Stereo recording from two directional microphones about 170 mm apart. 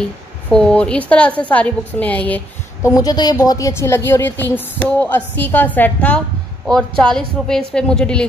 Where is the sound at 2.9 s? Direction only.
20° left (ahead or behind).